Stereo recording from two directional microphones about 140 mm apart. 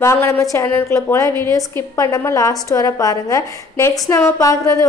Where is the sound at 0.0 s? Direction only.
20° left (ahead or behind).